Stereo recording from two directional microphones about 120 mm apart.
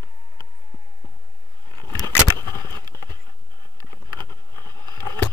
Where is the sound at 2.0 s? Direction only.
35° right (ahead or behind).